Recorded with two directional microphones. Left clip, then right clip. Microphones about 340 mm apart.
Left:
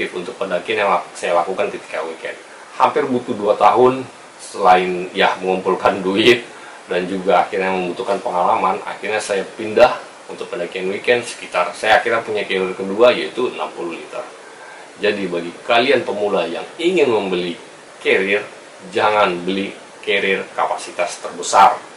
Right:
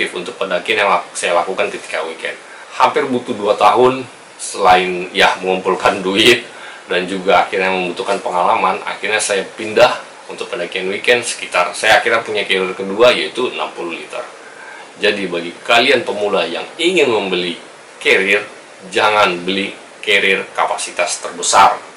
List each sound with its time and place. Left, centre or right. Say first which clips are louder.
0.0 s speech: right 3 dB; centre
3.6 s speech: right 1 dB; centre
4.6 s speech: right 2 dB; centre